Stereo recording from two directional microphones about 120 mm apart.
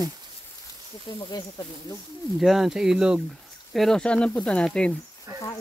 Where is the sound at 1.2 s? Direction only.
35° left (ahead or behind).